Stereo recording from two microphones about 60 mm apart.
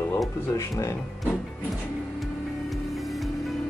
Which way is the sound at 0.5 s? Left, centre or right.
Left.